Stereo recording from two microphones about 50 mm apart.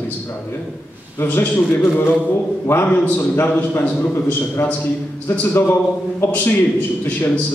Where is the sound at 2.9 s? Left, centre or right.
Left.